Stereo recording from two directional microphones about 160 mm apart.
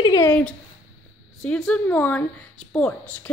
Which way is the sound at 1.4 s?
5° left (ahead or behind).